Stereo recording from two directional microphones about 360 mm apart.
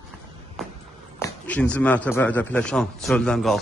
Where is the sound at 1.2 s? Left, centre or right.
Centre.